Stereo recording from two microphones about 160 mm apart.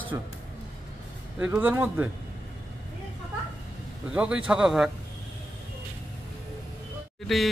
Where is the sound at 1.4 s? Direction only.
10° right (ahead or behind).